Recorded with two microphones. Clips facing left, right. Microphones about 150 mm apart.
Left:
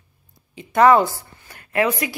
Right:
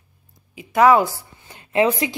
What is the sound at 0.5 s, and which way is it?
Speech, 5° right (ahead or behind).